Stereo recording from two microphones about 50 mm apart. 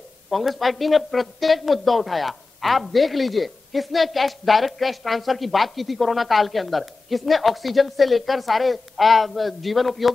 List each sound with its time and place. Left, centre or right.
0.3 s a man's voice: centre